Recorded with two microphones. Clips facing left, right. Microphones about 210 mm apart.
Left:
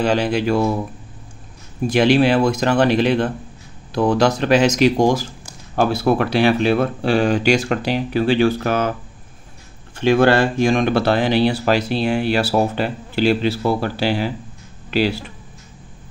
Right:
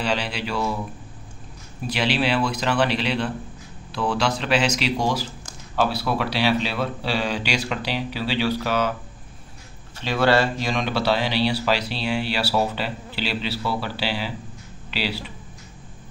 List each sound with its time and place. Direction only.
0.0 s speech: 45° left (ahead or behind)
1.8 s speech: 50° left (ahead or behind)
9.9 s speech: 50° left (ahead or behind)